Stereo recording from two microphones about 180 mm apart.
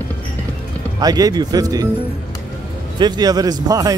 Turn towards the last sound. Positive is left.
turn(degrees=-20)  # may be behind; listen again after turning